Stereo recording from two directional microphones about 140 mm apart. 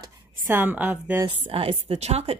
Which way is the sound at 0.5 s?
15° right (ahead or behind).